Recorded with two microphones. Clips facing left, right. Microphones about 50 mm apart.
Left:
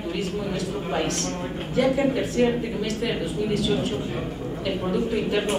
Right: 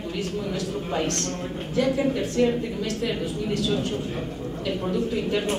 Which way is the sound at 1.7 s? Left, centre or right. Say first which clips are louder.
Left 2 dB; centre.